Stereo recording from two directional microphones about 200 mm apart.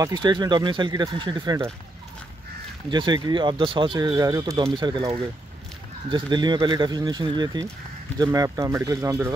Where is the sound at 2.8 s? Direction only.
25° right (ahead or behind).